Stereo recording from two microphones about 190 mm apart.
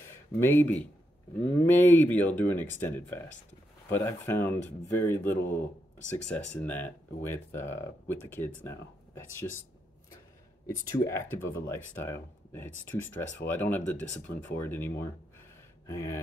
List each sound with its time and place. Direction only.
0.0 s speech: 10° left (ahead or behind)
11.1 s speech: 15° left (ahead or behind)
13.0 s speech: 75° left (ahead or behind)
13.5 s speech: 10° left (ahead or behind)